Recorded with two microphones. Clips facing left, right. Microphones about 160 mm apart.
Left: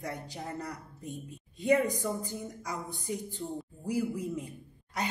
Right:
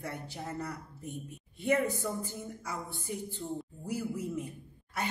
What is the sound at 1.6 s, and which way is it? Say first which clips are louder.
Speech: left 3 dB; 15° left (ahead or behind).